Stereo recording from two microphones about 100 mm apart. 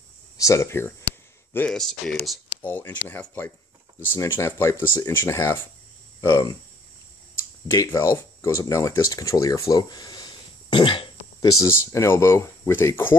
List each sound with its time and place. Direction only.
0.4 s speech: 30° left (ahead or behind)
1.7 s speech: 5° left (ahead or behind)
2.6 s speech: 20° left (ahead or behind)
7.7 s speech: 35° left (ahead or behind); by 11.1 s 55° left (ahead or behind)
11.4 s speech: 35° left (ahead or behind)